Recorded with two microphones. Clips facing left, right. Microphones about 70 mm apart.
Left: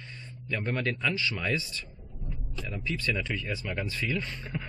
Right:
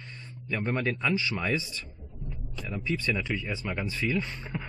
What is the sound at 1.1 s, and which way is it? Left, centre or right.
Speech, right.